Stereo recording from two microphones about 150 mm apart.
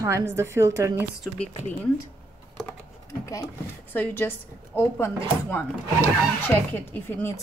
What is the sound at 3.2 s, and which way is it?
Speech, 20° left (ahead or behind).